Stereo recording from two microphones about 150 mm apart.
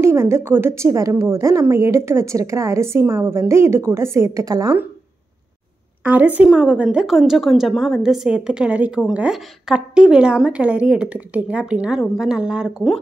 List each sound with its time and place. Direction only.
0.0 s a woman's voice: 15° right (ahead or behind)
6.0 s a woman's voice: 10° right (ahead or behind)